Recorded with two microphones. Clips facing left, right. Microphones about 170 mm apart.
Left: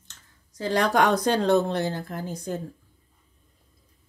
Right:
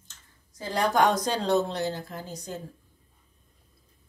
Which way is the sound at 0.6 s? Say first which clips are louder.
Left 2 dB; 85° left.